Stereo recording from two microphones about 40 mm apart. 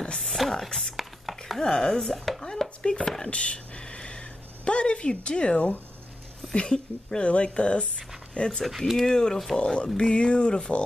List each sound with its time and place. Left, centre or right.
0.2 s a sound: centre
1.6 s speech: centre
2.1 s chopping: centre
2.4 s speech: centre
3.3 s a sound: left
6.5 s speech: left
8.4 s speech: centre
8.6 s speech: centre
9.6 s speech: left